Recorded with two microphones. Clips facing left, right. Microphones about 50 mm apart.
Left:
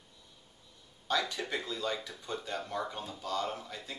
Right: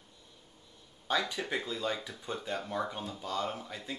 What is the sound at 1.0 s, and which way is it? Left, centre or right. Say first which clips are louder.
Speech: right 1 dB; centre.